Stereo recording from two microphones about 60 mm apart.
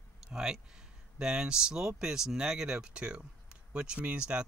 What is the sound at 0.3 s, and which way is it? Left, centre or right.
Speech, centre.